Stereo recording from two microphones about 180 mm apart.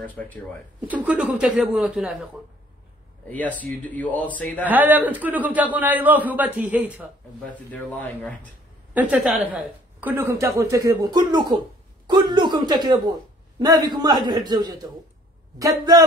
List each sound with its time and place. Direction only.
0.0 s speech: 10° left (ahead or behind)
0.7 s speech: 5° right (ahead or behind)
3.3 s speech: 10° left (ahead or behind)
4.6 s speech: 10° right (ahead or behind)
7.5 s speech: 10° left (ahead or behind)
8.9 s a man's voice: 5° right (ahead or behind)